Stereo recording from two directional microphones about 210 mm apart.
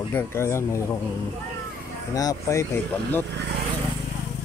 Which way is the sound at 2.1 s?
15° left (ahead or behind).